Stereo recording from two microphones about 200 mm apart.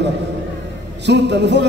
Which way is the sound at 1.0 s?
60° right (ahead or behind).